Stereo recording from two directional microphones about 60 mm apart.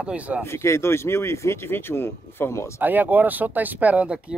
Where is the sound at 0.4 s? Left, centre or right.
Left.